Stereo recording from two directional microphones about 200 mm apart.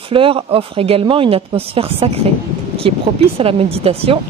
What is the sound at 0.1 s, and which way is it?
Speech, 25° right (ahead or behind).